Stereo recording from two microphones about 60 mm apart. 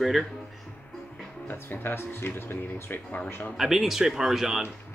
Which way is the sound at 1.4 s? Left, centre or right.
Left.